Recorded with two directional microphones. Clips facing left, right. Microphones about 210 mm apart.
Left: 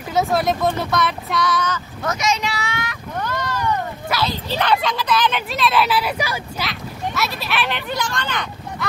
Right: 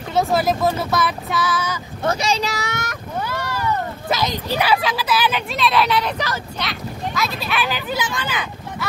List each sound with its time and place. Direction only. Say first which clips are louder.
0.1 s speech: even; centre (ahead or behind)
2.0 s speech: right 2 dB; 30° right (ahead or behind)
3.2 s vehicle: left 1 dB; 10° right (ahead or behind)
4.1 s speech: right 2 dB; 15° right (ahead or behind)